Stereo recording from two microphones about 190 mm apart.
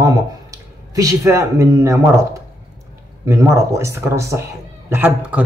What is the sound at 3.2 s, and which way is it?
Speech, 15° right (ahead or behind).